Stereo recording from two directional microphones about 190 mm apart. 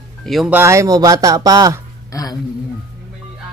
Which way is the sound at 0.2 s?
Centre (ahead or behind).